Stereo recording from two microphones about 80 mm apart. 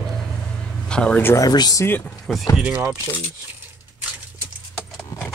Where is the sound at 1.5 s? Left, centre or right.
Left.